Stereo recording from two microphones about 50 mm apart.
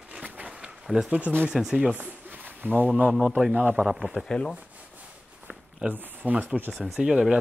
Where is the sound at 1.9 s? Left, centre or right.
Right.